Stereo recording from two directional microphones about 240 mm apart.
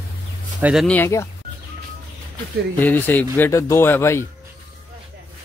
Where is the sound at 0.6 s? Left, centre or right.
Centre.